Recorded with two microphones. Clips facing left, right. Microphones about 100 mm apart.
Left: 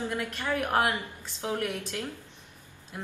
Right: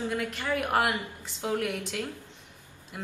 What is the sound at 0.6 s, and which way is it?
A woman's voice, 5° right (ahead or behind).